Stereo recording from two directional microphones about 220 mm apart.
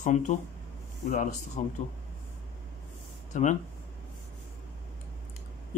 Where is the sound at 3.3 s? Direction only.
35° left (ahead or behind).